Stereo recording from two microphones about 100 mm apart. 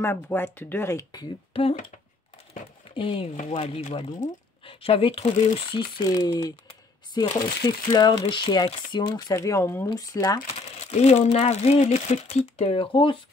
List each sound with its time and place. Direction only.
0.0 s speech: 20° left (ahead or behind)
1.5 s speech: 70° left (ahead or behind)
3.0 s speech: 60° left (ahead or behind); by 4.0 s 85° left
4.6 s speech: 65° left (ahead or behind)
6.0 s speech: 40° left (ahead or behind)
9.3 s speech: 30° left (ahead or behind)
10.4 s speech: 90° left; by 13.2 s 60° left (ahead or behind)